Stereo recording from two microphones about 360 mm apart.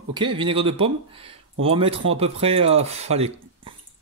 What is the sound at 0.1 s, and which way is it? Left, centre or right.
Speech, centre.